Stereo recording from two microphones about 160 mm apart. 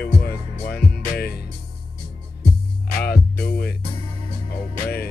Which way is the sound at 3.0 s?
70° left (ahead or behind).